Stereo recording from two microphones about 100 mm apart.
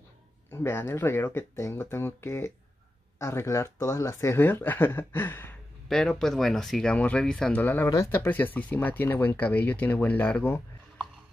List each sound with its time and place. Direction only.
0.5 s speech: 25° left (ahead or behind)
5.9 s speech: 5° left (ahead or behind)
7.6 s speech: 20° left (ahead or behind)